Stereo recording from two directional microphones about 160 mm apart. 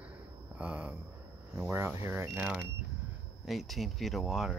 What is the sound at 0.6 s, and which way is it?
Speech, 10° right (ahead or behind).